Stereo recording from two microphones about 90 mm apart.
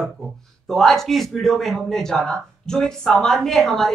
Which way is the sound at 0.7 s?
5° left (ahead or behind).